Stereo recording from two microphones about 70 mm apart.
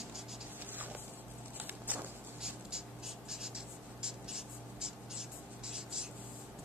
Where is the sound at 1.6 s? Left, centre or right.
Right.